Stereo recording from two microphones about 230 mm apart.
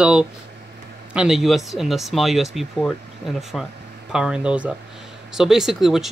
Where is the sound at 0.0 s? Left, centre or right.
Centre.